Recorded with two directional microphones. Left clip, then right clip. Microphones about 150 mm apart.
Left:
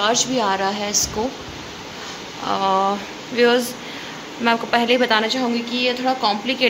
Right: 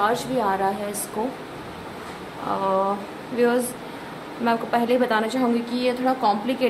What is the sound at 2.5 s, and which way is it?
A woman's voice, 10° left (ahead or behind).